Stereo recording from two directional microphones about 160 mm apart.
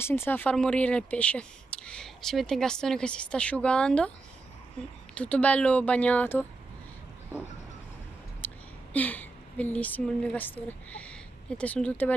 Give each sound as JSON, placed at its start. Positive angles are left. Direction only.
{"t": 0.0, "sound": "speech", "side_deg": 15}
{"t": 5.1, "sound": "speech", "side_deg": 10}
{"t": 8.4, "sound": "a sound", "side_deg": 10}
{"t": 8.9, "sound": "a woman's voice", "side_deg": 10}